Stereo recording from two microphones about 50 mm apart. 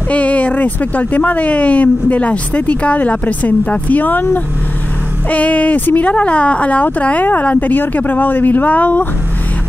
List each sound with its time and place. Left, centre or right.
0.1 s speech: left
5.3 s speech: left